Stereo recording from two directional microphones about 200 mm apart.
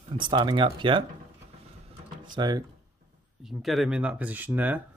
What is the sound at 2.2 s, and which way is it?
Speech, 20° right (ahead or behind).